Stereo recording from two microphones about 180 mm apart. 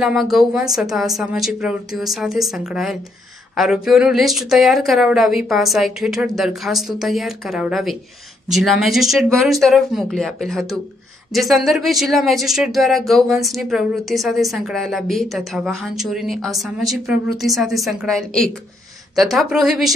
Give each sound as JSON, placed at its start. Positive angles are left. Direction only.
{"t": 0.0, "sound": "speech", "side_deg": 0}